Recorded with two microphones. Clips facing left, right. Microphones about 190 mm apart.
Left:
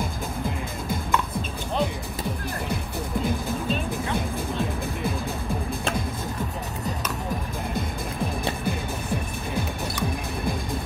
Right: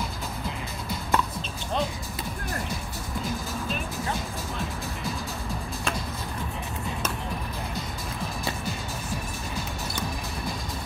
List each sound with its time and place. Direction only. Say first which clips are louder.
0.8 s music: even; 55° left (ahead or behind)
8.6 s music: left 5 dB; 55° left (ahead or behind)